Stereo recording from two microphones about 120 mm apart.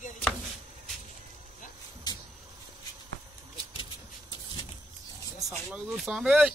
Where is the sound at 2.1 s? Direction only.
35° left (ahead or behind).